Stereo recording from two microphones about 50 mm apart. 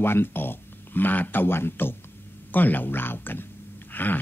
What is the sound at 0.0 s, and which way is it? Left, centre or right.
Speech, left.